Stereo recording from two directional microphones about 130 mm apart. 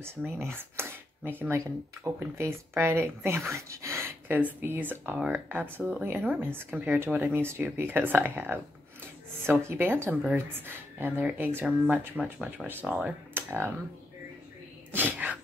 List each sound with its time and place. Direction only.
0.0 s speech: 20° right (ahead or behind)
13.3 s a sound: 15° right (ahead or behind)
14.9 s sneeze: 15° right (ahead or behind)